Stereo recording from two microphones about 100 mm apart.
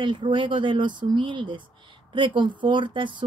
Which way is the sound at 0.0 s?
55° right (ahead or behind).